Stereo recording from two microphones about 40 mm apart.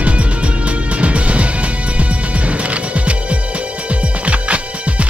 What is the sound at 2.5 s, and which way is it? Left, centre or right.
Music, right.